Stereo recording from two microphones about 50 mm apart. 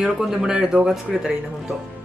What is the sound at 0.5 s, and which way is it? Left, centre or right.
Speech, centre.